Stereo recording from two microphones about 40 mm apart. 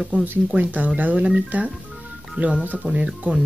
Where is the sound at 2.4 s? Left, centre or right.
Right.